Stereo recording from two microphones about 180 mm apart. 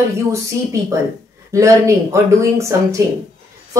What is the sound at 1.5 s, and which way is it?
A woman's voice, 15° right (ahead or behind).